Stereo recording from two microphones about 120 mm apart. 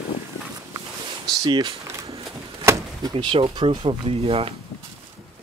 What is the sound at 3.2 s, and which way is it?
Speech, 50° right (ahead or behind).